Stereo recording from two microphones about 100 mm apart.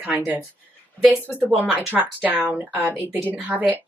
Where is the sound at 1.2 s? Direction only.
20° left (ahead or behind).